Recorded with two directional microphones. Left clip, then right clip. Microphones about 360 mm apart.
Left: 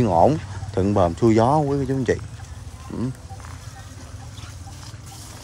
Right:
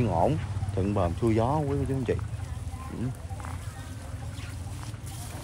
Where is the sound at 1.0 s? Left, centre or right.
Centre.